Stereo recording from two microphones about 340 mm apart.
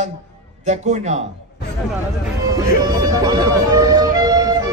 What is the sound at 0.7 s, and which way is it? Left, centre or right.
Speech, centre.